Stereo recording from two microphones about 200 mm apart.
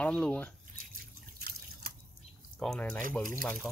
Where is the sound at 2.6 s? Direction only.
5° left (ahead or behind).